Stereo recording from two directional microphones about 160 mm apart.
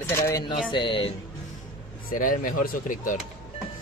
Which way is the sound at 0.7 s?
30° left (ahead or behind).